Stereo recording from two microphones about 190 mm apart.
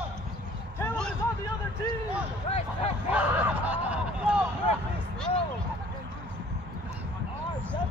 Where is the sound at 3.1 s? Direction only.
5° right (ahead or behind).